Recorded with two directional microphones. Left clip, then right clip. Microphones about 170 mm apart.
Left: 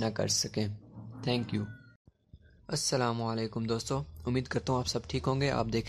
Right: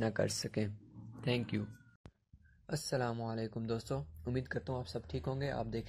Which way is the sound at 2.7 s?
10° left (ahead or behind).